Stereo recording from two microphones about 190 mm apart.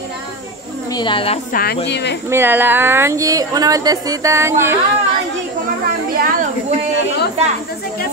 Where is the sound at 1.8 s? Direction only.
65° left (ahead or behind).